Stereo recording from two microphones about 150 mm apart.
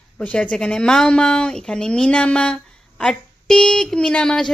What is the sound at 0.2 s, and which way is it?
Speech, 5° left (ahead or behind).